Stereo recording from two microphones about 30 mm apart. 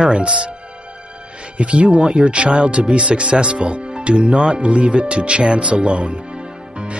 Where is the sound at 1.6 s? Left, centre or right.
Right.